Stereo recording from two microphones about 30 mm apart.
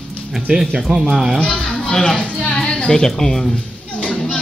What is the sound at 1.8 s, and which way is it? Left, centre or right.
Speech, centre.